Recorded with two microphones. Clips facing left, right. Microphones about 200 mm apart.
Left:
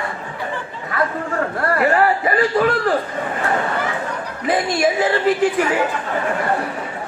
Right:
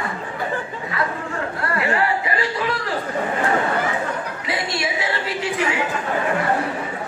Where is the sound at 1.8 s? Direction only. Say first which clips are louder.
Left 5 dB; 45° left (ahead or behind).